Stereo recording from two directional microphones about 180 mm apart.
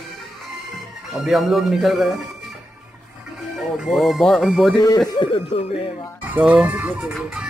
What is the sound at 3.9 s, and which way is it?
Speech, centre (ahead or behind).